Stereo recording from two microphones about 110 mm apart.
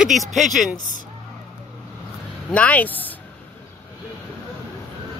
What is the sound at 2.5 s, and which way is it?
Speech, 10° left (ahead or behind).